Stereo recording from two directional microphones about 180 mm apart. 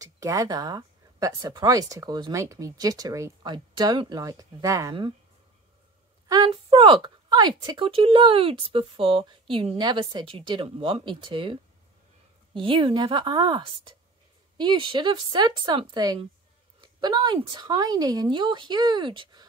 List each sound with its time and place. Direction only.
0.0 s speech: 20° right (ahead or behind)
6.2 s speech: 20° right (ahead or behind)
12.5 s a woman's voice: 25° right (ahead or behind)